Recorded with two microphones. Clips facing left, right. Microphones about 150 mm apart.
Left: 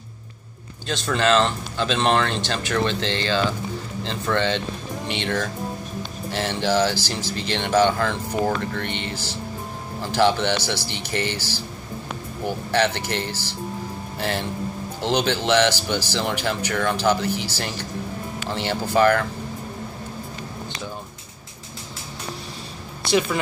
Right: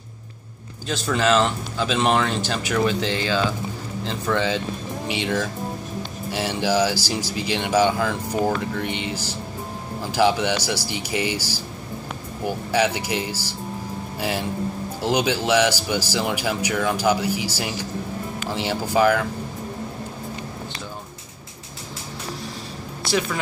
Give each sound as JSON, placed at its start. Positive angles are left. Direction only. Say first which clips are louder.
{"t": 0.8, "sound": "speech", "louder": "even", "side_deg": -5}